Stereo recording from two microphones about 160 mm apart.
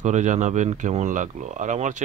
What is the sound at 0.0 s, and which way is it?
Speech, 50° right (ahead or behind).